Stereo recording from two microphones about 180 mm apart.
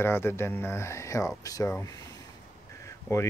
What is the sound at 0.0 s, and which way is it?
Speech, 15° left (ahead or behind).